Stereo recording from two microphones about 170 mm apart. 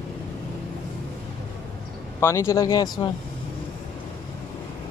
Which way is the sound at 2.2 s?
15° left (ahead or behind).